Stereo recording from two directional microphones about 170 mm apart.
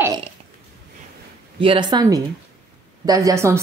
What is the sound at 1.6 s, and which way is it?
A woman's voice, 30° right (ahead or behind).